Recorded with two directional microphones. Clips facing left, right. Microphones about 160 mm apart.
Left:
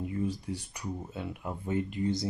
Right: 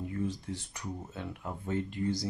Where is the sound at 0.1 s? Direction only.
10° left (ahead or behind).